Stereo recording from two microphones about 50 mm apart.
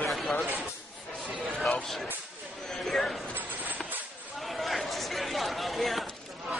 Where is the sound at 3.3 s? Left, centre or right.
Right.